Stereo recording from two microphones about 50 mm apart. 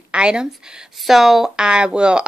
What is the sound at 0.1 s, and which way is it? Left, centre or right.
Speech, centre.